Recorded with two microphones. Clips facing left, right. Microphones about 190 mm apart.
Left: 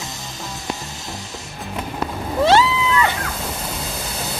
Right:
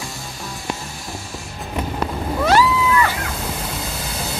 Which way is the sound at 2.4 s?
25° left (ahead or behind).